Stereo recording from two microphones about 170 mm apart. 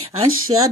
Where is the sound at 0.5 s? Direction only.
35° right (ahead or behind).